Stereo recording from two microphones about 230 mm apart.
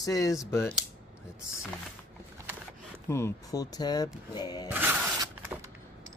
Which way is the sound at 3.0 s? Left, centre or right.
Centre.